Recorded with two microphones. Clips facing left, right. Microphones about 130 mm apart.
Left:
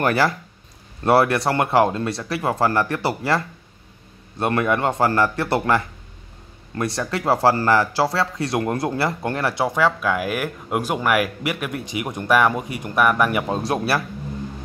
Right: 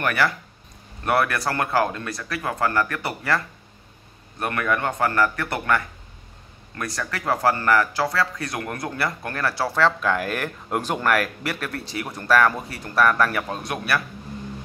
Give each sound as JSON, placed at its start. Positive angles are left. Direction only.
{"t": 0.0, "sound": "a man's voice", "side_deg": 30}
{"t": 13.6, "sound": "a man's voice", "side_deg": 30}